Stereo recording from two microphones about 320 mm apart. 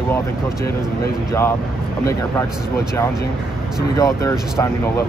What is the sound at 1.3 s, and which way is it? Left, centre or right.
Speech, centre.